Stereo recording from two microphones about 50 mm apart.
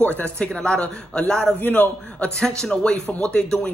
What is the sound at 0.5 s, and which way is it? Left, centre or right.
A man's voice, centre.